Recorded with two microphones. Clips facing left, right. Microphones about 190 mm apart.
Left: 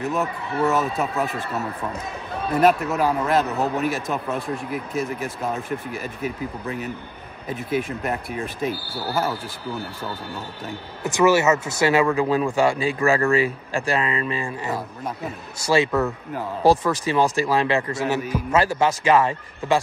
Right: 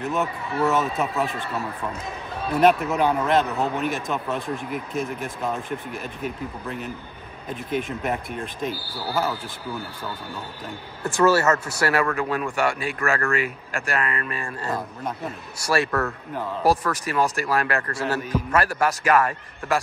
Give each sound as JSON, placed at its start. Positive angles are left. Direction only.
{"t": 0.0, "sound": "a man's voice", "side_deg": 0}
{"t": 2.6, "sound": "a man's voice", "side_deg": 0}
{"t": 7.4, "sound": "speech", "side_deg": 5}
{"t": 11.6, "sound": "a man's voice", "side_deg": 20}